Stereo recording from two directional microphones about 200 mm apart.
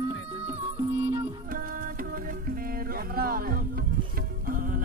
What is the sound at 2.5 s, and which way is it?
Music, 45° right (ahead or behind).